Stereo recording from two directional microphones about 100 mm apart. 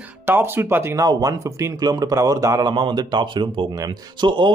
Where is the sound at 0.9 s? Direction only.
35° right (ahead or behind).